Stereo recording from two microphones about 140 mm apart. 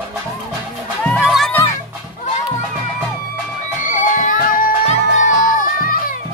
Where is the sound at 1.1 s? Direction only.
5° right (ahead or behind).